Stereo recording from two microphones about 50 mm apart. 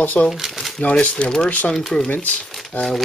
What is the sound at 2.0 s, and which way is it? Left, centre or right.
Speech, left.